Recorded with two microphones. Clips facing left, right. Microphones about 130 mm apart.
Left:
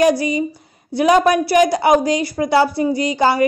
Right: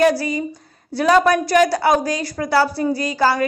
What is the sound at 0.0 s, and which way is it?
A woman's voice, 15° left (ahead or behind).